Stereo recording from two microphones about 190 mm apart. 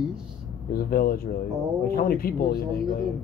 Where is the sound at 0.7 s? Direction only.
50° left (ahead or behind).